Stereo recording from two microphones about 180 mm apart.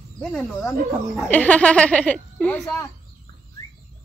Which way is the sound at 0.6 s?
10° left (ahead or behind).